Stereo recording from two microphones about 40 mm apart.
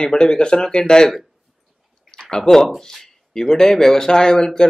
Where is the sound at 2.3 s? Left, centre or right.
Centre.